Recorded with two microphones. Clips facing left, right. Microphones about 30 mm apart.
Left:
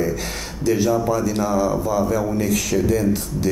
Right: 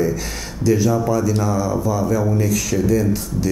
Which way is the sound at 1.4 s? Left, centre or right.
Left.